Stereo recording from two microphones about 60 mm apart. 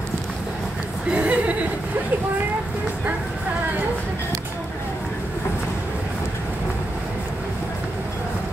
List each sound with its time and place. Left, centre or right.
1.1 s speech: centre